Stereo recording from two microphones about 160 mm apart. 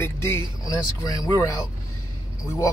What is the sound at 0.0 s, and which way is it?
A man's voice, 15° left (ahead or behind).